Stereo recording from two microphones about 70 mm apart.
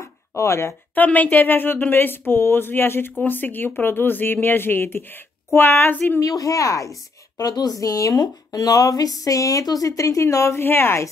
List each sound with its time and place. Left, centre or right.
0.4 s speech: left
0.9 s speech: left
6.2 s a woman's voice: left
7.3 s speech: left
7.8 s speech: left